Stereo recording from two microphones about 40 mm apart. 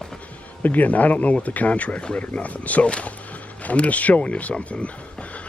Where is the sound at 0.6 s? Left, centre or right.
Left.